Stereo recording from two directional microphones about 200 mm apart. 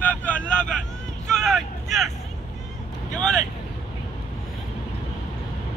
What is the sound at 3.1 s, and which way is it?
Vehicle, 5° left (ahead or behind).